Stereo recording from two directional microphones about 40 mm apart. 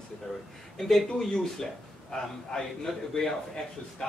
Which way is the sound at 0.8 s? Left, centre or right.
Centre.